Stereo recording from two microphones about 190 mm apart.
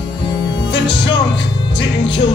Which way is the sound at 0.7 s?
70° left (ahead or behind).